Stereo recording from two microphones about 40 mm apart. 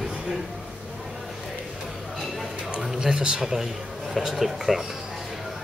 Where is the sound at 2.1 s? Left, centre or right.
Centre.